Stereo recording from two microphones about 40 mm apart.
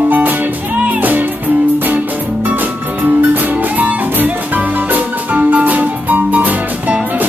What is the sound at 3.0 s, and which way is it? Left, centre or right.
Music, right.